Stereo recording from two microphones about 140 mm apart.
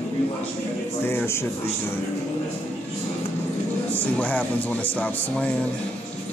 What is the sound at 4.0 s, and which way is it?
Speech, 10° left (ahead or behind).